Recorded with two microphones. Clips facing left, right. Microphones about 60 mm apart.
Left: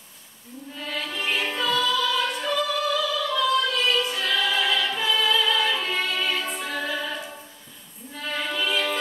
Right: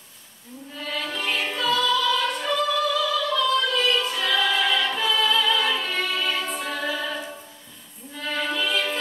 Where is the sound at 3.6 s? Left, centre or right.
Centre.